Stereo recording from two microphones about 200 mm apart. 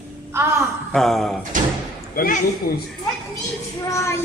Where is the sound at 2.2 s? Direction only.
50° left (ahead or behind).